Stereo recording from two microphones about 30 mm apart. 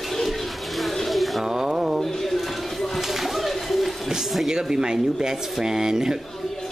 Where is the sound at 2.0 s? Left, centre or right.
Centre.